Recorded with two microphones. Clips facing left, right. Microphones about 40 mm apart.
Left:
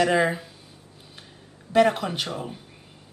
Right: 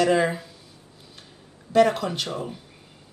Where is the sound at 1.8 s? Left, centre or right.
Centre.